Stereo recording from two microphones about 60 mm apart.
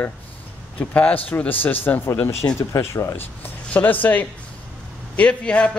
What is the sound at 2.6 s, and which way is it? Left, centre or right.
Speech, left.